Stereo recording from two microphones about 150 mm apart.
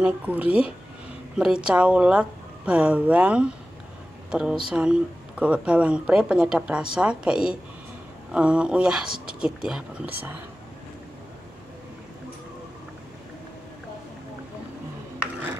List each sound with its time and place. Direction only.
0.0 s speech: 10° right (ahead or behind)
9.1 s speech: 75° right (ahead or behind)
9.4 s speech: 5° right (ahead or behind)